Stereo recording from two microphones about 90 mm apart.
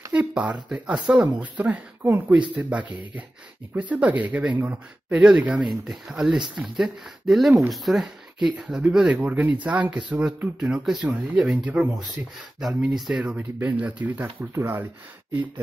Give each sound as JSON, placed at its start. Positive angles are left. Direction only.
{"t": 0.1, "sound": "speech", "side_deg": -10}
{"t": 12.6, "sound": "speech", "side_deg": -5}
{"t": 13.2, "sound": "speech", "side_deg": -15}
{"t": 14.4, "sound": "speech", "side_deg": -30}